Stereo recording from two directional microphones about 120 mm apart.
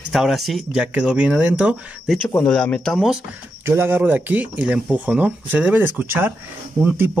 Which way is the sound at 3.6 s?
20° right (ahead or behind).